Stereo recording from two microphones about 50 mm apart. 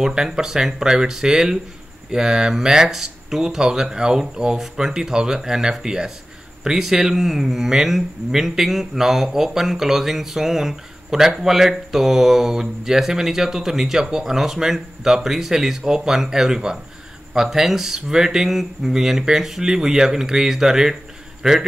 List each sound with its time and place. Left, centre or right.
0.0 s a man's voice: centre